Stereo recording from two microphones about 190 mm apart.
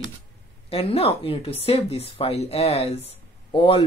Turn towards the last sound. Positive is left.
turn(degrees=25)  # may be behind; listen again after turning